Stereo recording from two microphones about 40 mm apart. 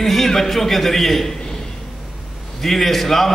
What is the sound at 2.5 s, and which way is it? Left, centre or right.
Speech, centre.